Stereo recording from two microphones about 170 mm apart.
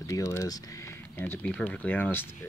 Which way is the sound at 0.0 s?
20° left (ahead or behind).